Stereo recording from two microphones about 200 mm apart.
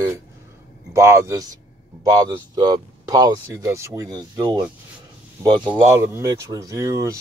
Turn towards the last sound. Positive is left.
turn(degrees=-15)  # may be behind; listen again after turning